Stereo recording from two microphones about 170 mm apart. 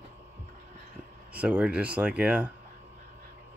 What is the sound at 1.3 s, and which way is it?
Speech, 5° right (ahead or behind).